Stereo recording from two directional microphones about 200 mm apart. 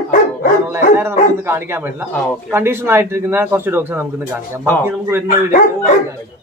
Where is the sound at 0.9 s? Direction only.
10° right (ahead or behind).